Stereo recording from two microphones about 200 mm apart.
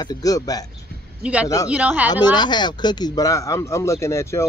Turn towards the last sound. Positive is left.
turn(degrees=15)  # may be behind; listen again after turning